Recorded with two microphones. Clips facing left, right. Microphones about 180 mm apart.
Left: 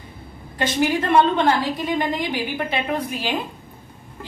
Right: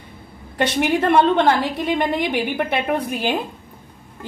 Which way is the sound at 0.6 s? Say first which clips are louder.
Right 2 dB; 65° right (ahead or behind).